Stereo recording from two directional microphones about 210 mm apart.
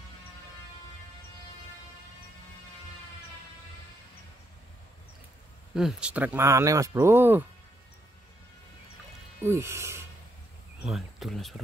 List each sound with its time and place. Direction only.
5.8 s speech: 5° right (ahead or behind)
9.4 s speech: 10° right (ahead or behind)
10.8 s speech: centre (ahead or behind)